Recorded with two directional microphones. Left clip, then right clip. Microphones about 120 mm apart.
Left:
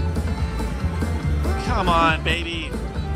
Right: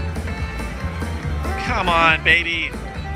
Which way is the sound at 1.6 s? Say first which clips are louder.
Right 3 dB; 15° left (ahead or behind).